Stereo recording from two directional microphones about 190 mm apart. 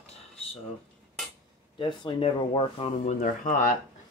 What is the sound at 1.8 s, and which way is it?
Speech, 25° left (ahead or behind).